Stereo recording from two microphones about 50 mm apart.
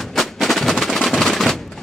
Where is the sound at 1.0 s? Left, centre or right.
Centre.